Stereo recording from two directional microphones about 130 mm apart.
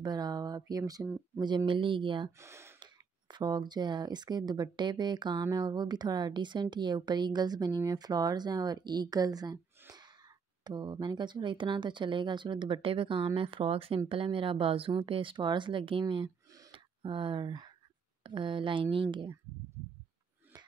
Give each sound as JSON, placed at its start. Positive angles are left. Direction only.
{"t": 0.0, "sound": "a sound", "side_deg": -30}
{"t": 1.0, "sound": "speech", "side_deg": -15}
{"t": 1.7, "sound": "speech", "side_deg": -40}
{"t": 2.3, "sound": "speech", "side_deg": -20}
{"t": 2.8, "sound": "speech", "side_deg": -35}
{"t": 10.6, "sound": "speech", "side_deg": -35}